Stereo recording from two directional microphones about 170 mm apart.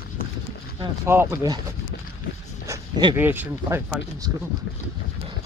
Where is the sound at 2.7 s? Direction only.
25° right (ahead or behind).